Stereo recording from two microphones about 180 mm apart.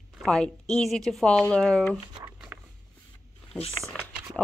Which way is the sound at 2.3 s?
5° right (ahead or behind).